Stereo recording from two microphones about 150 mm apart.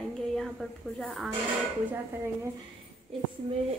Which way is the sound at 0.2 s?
5° left (ahead or behind).